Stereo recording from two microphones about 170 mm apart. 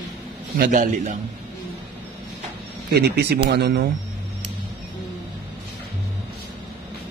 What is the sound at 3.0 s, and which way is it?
Speech, 75° right (ahead or behind).